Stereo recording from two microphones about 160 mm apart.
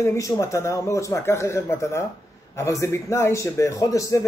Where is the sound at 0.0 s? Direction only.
15° left (ahead or behind).